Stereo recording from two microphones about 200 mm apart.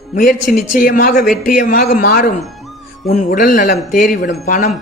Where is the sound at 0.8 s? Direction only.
40° left (ahead or behind).